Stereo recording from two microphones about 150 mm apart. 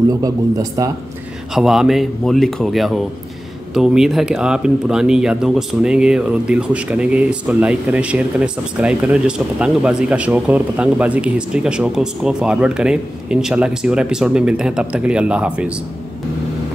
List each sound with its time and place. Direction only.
0.2 s speech: 25° right (ahead or behind)
1.5 s speech: 5° right (ahead or behind)